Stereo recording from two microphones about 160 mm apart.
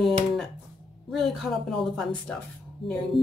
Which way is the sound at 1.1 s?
Centre (ahead or behind).